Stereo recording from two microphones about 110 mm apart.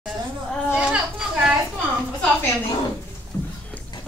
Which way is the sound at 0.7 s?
10° right (ahead or behind).